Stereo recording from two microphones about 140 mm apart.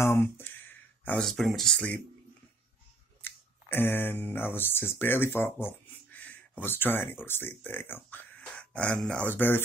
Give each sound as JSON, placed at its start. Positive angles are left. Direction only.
{"t": 0.0, "sound": "speech", "side_deg": 15}
{"t": 3.2, "sound": "speech", "side_deg": 15}